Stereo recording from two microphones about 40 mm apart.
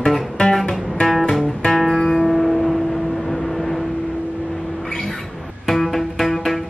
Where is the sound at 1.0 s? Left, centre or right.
Centre.